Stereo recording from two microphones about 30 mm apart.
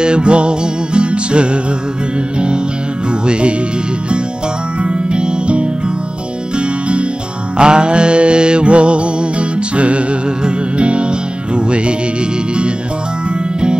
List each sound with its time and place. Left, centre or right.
0.0 s music: right
3.3 s music: right
4.8 s music: right